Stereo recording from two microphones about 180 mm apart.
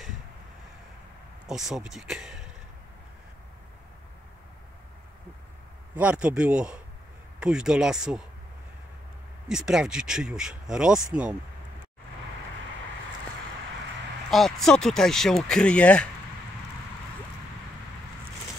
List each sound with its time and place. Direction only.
1.5 s speech: centre (ahead or behind)
5.9 s speech: 5° right (ahead or behind)
9.5 s speech: 5° right (ahead or behind)
14.3 s speech: centre (ahead or behind)